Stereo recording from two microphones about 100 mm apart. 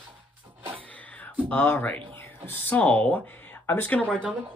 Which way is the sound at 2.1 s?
20° left (ahead or behind).